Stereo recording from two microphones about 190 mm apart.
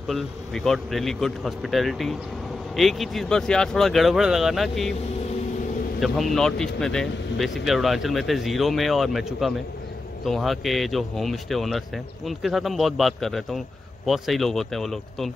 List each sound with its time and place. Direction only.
0.1 s speech: centre (ahead or behind)
5.9 s speech: centre (ahead or behind)